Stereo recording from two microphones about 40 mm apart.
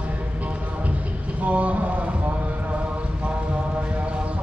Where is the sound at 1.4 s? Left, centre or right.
Right.